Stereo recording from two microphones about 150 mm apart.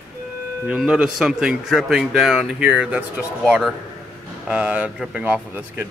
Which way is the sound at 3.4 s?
5° left (ahead or behind).